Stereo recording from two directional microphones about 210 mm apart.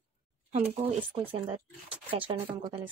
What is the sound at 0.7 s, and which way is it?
Speech, 30° right (ahead or behind).